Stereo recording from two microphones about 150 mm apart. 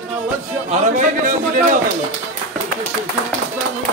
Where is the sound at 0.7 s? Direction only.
60° right (ahead or behind).